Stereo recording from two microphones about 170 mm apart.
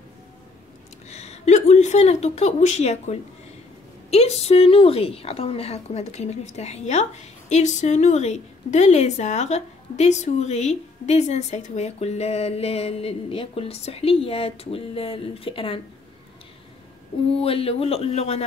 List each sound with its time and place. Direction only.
1.0 s a woman's voice: 40° left (ahead or behind)
17.4 s a woman's voice: 35° left (ahead or behind)